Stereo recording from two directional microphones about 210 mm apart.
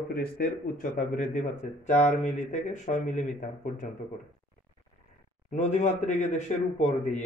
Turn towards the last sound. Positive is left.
turn(degrees=35)  # may be behind; listen again after turning